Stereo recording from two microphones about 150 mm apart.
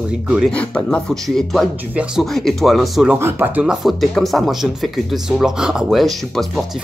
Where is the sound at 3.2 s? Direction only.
15° right (ahead or behind).